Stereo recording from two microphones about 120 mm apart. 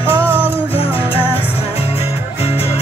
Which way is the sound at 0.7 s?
50° left (ahead or behind).